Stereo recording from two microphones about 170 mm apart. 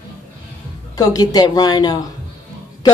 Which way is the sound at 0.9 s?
20° left (ahead or behind).